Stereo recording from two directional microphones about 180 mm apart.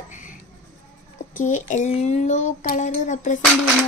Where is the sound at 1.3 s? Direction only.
45° left (ahead or behind).